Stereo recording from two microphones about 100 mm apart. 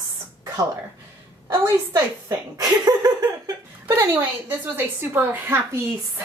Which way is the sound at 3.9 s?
25° right (ahead or behind).